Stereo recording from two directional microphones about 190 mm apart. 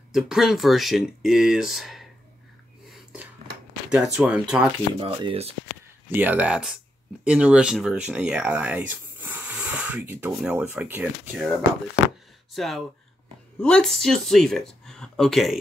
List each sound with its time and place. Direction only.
0.1 s speech: centre (ahead or behind)
3.9 s speech: 5° right (ahead or behind)
5.0 s speech: 30° right (ahead or behind)
6.0 s speech: 10° right (ahead or behind)
12.5 s speech: centre (ahead or behind)